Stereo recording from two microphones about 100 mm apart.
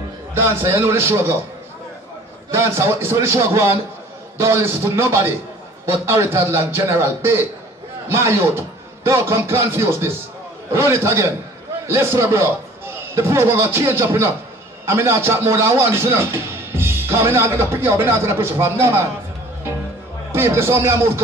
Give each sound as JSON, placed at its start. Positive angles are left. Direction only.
{"t": 0.3, "sound": "a man's voice", "side_deg": -25}
{"t": 2.5, "sound": "a man's voice", "side_deg": -25}
{"t": 20.3, "sound": "a man's voice", "side_deg": -25}